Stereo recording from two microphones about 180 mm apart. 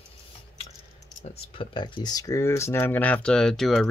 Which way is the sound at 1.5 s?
25° left (ahead or behind).